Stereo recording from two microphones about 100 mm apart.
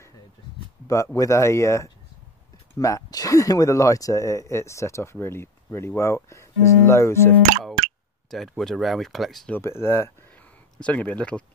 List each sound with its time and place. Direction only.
0.8 s speech: 30° left (ahead or behind)
8.3 s speech: centre (ahead or behind)
9.6 s speech: 25° left (ahead or behind)
10.8 s speech: 15° left (ahead or behind)